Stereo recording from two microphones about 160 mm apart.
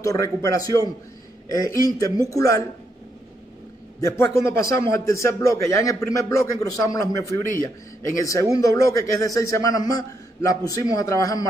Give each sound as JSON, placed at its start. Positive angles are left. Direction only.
{"t": 0.0, "sound": "a man's voice", "side_deg": 20}
{"t": 4.0, "sound": "a man's voice", "side_deg": 20}